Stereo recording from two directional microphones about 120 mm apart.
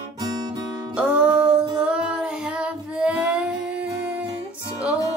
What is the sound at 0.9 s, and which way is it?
Music, 10° right (ahead or behind).